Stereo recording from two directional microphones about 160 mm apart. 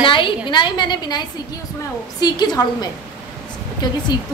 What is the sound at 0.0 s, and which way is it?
A woman's voice, 30° left (ahead or behind).